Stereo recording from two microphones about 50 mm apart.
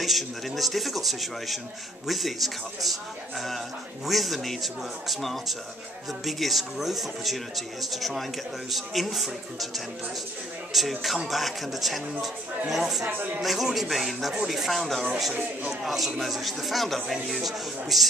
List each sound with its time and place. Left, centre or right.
0.0 s a man's voice: centre
10.7 s a man's voice: centre
13.1 s speech: right
13.4 s a man's voice: centre